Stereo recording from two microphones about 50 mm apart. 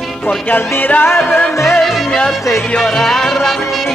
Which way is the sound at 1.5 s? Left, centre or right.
Left.